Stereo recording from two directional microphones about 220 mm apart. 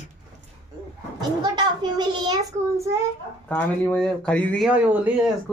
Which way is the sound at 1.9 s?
20° right (ahead or behind).